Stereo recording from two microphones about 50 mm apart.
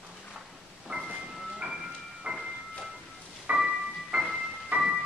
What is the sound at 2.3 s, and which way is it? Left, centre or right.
Music, centre.